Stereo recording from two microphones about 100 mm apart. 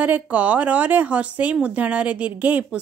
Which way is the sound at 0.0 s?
15° right (ahead or behind).